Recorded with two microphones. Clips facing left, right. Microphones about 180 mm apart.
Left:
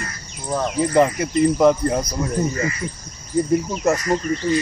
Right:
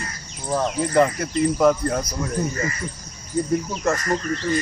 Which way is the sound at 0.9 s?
15° left (ahead or behind).